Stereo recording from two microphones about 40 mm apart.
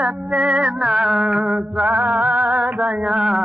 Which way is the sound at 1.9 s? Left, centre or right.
Right.